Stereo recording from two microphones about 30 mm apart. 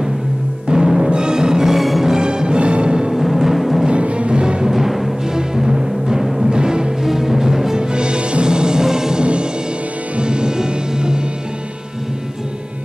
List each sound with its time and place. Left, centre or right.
0.7 s timpani: right
1.8 s music: centre
2.0 s music: right
3.1 s timpani: centre
3.9 s timpani: right
4.6 s timpani: centre
5.3 s timpani: centre
6.2 s timpani: centre
6.5 s music: right
7.1 s music: centre
7.9 s music: right
9.2 s music: right